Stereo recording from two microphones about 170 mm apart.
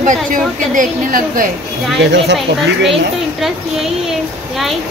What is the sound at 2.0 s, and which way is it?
Speech, 80° right.